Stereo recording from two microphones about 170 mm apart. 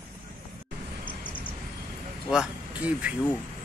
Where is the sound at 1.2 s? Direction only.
30° left (ahead or behind).